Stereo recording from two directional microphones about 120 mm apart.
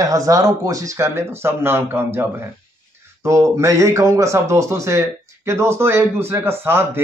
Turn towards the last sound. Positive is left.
turn(degrees=-20)  # may be behind; listen again after turning